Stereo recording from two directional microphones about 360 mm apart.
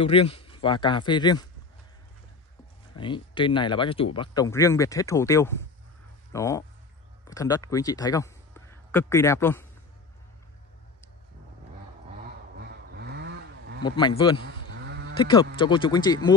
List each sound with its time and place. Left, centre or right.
0.0 s speech: centre
3.0 s a man's voice: centre
12.5 s a sound: right
13.8 s speech: centre
14.9 s sheep: right
15.1 s speech: centre